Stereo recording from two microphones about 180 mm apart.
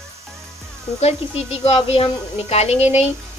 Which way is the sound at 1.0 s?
35° left (ahead or behind).